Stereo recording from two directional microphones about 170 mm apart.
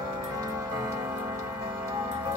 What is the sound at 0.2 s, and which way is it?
Tick-tock, 20° right (ahead or behind).